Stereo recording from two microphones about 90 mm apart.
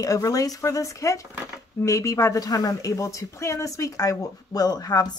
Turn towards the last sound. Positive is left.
turn(degrees=45)  # may be behind; listen again after turning